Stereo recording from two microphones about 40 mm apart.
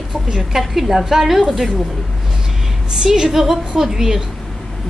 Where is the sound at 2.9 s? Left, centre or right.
Centre.